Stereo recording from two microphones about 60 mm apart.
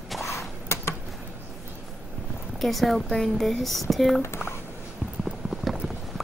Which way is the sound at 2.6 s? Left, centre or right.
Centre.